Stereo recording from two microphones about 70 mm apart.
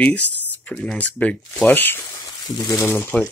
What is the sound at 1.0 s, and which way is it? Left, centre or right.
Speech, left.